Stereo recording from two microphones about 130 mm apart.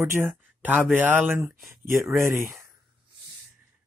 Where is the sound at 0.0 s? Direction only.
15° right (ahead or behind).